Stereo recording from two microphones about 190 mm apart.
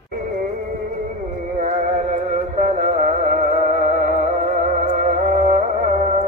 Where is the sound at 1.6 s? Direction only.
40° right (ahead or behind).